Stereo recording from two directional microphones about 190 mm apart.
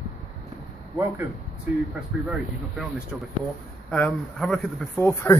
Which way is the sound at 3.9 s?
5° left (ahead or behind).